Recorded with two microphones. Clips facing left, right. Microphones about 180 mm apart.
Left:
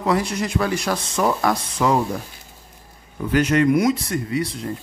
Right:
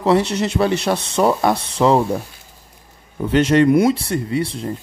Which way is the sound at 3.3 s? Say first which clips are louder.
Right 4 dB; 30° right (ahead or behind).